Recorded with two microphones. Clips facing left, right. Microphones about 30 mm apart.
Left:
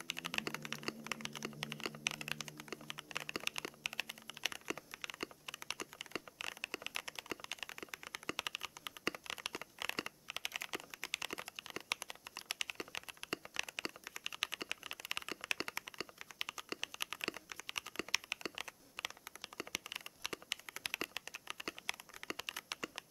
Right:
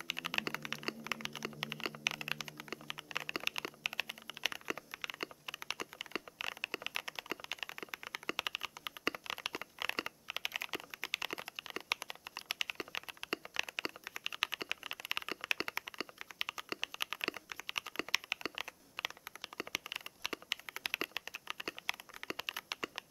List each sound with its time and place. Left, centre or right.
0.1 s typing: centre